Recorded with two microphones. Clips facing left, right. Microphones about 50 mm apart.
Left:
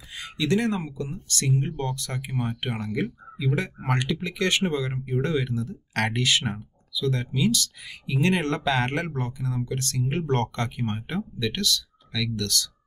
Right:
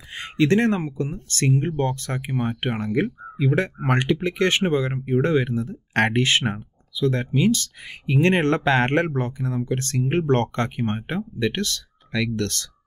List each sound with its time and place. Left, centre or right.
0.1 s speech: right